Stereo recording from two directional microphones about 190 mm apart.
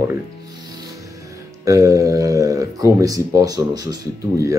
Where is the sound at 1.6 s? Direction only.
15° right (ahead or behind).